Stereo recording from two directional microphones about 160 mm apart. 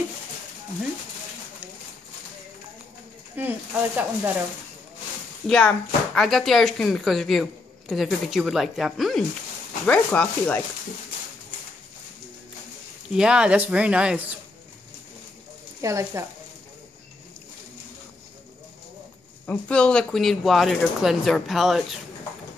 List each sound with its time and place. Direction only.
3.3 s speech: 10° right (ahead or behind)
5.5 s speech: 5° left (ahead or behind)
13.1 s speech: 5° right (ahead or behind)
15.8 s speech: 20° right (ahead or behind)
19.4 s speech: 5° left (ahead or behind)